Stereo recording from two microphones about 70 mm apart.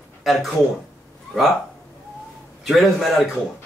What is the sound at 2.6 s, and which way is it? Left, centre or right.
Speech, centre.